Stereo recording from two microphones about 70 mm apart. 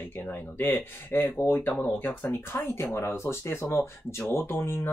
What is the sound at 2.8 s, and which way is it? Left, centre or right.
Speech, left.